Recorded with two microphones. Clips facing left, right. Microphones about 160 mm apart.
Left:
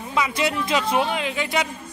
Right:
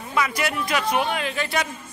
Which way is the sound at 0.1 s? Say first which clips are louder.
Left 1 dB; 20° left (ahead or behind).